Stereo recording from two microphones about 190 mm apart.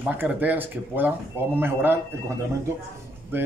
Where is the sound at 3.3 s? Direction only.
10° right (ahead or behind).